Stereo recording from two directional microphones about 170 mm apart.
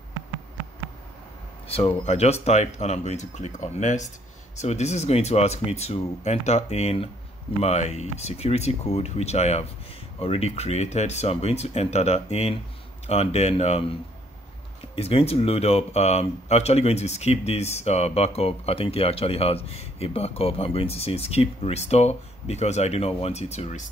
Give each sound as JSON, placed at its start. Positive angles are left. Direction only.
{"t": 1.7, "sound": "speech", "side_deg": 35}
{"t": 15.0, "sound": "speech", "side_deg": 35}